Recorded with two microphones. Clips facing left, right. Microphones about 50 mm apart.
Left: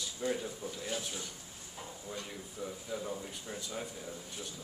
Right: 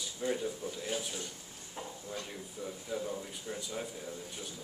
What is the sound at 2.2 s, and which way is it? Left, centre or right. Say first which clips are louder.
Speech: even; centre.